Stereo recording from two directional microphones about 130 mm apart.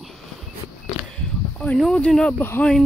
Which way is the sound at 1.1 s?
10° left (ahead or behind).